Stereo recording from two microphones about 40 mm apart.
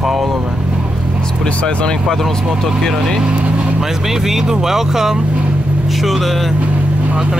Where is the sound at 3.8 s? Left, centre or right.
Centre.